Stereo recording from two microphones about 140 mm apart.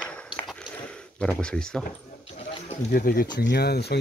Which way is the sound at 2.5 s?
50° left (ahead or behind).